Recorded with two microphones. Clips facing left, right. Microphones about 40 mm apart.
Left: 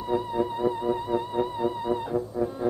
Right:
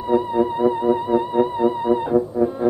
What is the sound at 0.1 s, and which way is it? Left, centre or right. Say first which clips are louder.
Music: right 8 dB; right.